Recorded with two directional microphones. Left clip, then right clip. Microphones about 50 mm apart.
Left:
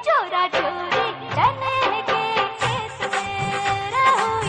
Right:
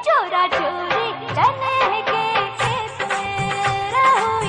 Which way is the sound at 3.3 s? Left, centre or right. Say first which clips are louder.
Right 2 dB; right.